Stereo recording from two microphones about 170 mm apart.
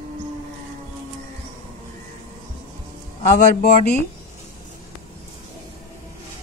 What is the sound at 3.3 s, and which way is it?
Speech, 50° left (ahead or behind).